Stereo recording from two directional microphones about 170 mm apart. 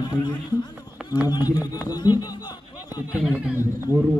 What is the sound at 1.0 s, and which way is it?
Run, 5° right (ahead or behind).